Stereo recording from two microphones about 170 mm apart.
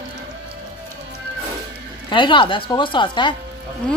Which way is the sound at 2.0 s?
30° left (ahead or behind).